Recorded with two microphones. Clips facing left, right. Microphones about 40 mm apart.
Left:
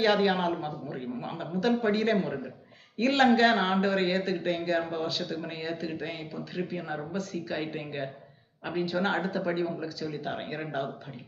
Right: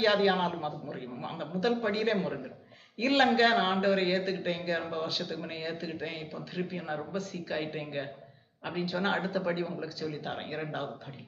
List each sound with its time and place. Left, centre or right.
0.0 s a man's voice: centre
1.5 s a man's voice: centre
3.0 s speech: centre
5.0 s a man's voice: centre